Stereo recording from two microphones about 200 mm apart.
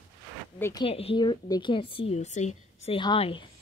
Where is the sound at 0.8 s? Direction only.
30° left (ahead or behind).